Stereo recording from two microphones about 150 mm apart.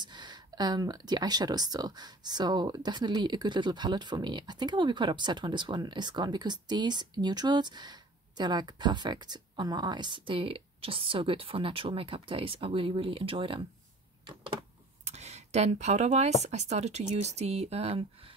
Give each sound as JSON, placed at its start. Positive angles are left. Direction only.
{"t": 0.0, "sound": "speech", "side_deg": -30}
{"t": 15.0, "sound": "speech", "side_deg": -45}